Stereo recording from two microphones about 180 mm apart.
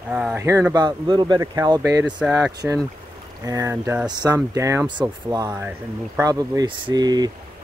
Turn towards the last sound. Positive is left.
turn(degrees=-20)  # may be behind; listen again after turning